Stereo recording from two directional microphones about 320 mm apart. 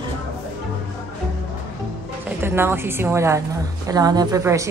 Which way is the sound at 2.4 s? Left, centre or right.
Centre.